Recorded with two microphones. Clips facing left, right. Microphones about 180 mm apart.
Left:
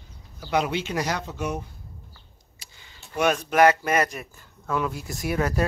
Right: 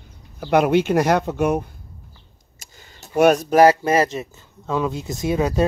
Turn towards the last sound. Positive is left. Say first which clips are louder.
# right 5 dB
turn(degrees=-20)  # may be behind; listen again after turning